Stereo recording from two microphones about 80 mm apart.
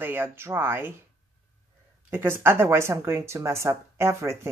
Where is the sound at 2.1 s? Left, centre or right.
Right.